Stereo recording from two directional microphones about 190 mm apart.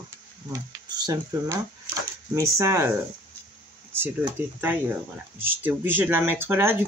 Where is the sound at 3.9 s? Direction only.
10° right (ahead or behind).